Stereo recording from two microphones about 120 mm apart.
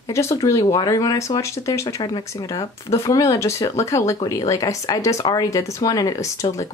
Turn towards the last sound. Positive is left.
turn(degrees=25)  # may be behind; listen again after turning